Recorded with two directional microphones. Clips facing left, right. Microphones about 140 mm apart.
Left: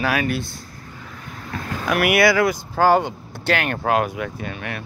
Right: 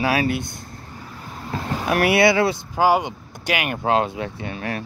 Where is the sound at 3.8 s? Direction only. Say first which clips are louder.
Right 2 dB; 25° right (ahead or behind).